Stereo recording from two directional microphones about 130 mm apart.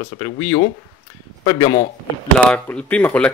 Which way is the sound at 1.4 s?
35° left (ahead or behind).